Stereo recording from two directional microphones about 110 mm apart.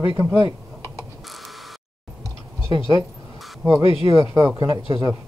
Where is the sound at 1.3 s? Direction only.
Centre (ahead or behind).